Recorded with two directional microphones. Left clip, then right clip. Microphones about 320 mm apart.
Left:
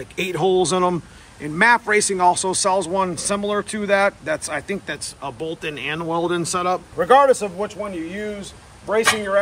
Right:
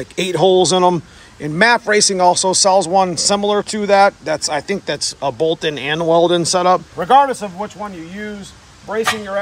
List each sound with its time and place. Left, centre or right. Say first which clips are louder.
0.1 s a man's voice: right 6 dB; centre
7.3 s speech: even; right